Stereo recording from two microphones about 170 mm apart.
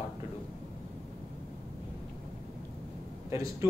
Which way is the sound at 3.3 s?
20° right (ahead or behind).